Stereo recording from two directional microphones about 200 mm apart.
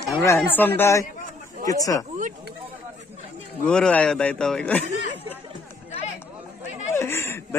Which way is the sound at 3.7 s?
5° left (ahead or behind).